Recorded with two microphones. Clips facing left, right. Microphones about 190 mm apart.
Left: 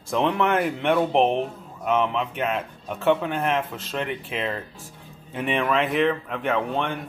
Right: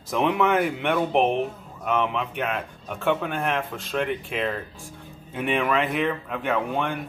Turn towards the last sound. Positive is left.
turn(degrees=0)  # may be behind; listen again after turning